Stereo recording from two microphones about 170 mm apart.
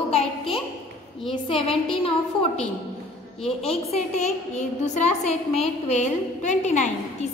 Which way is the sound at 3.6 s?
40° left (ahead or behind).